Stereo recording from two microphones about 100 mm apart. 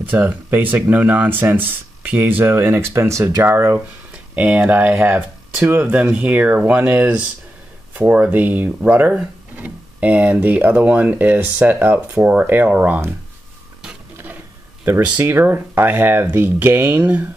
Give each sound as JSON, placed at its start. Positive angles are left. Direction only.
{"t": 0.0, "sound": "speech", "side_deg": -15}
{"t": 14.9, "sound": "speech", "side_deg": -15}